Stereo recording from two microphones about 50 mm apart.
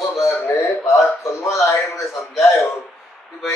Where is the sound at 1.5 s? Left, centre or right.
Left.